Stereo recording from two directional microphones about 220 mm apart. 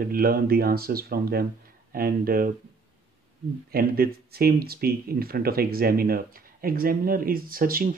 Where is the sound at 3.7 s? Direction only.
40° right (ahead or behind).